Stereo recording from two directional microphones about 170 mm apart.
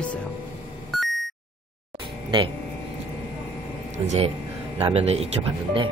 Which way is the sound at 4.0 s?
30° right (ahead or behind).